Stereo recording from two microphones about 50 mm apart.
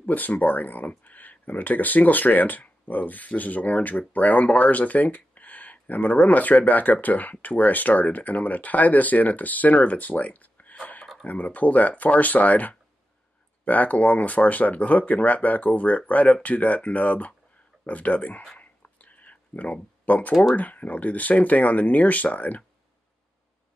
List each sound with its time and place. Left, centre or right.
0.0 s speech: left
18.6 s a sound: left
20.5 s speech: left